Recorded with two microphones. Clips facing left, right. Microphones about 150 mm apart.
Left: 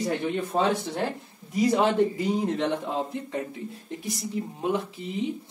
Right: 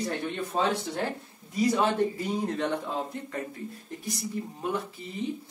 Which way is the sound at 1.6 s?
20° left (ahead or behind).